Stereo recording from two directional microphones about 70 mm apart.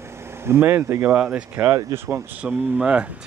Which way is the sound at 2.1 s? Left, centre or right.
Centre.